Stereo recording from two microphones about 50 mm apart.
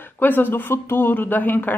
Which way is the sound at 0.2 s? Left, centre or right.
Left.